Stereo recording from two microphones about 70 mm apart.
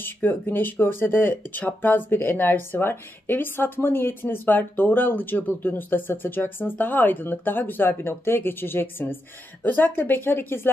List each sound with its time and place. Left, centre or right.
0.0 s speech: left